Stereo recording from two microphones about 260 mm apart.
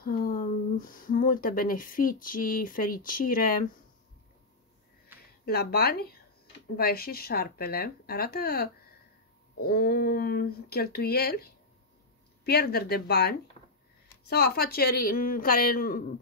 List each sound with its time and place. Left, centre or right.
0.0 s speech: left
5.4 s speech: left